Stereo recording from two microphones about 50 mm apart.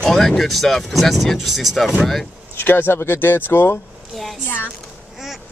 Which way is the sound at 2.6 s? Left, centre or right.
Left.